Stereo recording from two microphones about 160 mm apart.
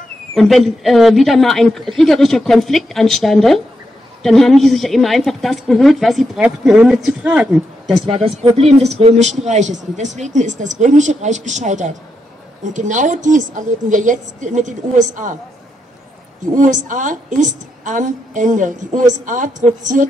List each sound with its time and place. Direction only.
0.3 s a woman's voice: centre (ahead or behind)
8.1 s a woman's voice: 40° right (ahead or behind)
16.5 s a woman's voice: 55° right (ahead or behind)